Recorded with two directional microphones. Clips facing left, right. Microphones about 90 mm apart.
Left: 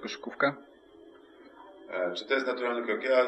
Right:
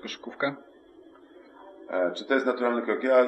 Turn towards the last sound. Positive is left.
turn(degrees=-30)  # may be behind; listen again after turning